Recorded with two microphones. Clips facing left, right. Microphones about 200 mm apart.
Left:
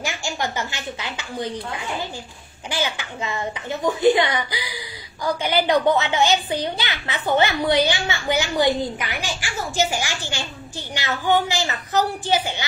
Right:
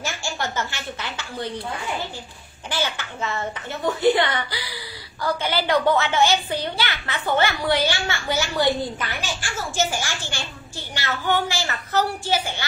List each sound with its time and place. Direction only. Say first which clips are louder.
0.0 s a child's voice: left 2 dB; 15° left (ahead or behind)
2.7 s a child's voice: left 1 dB; 15° left (ahead or behind)